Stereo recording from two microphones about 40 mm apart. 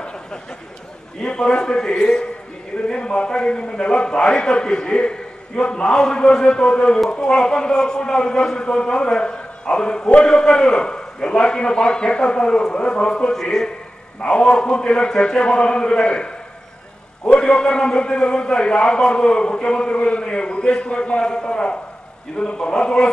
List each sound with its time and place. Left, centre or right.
1.2 s a man's voice: left
13.3 s a man's voice: centre
14.2 s a man's voice: left
17.4 s a man's voice: left